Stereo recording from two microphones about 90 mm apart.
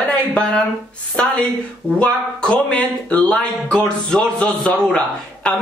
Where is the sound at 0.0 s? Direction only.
10° left (ahead or behind).